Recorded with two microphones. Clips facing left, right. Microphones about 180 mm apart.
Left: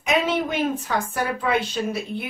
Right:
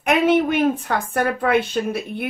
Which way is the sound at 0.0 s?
60° right (ahead or behind).